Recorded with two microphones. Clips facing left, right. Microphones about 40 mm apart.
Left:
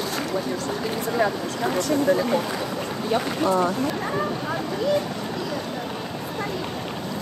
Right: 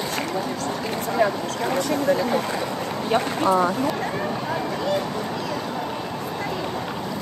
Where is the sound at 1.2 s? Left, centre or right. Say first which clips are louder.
Right 2 dB; centre.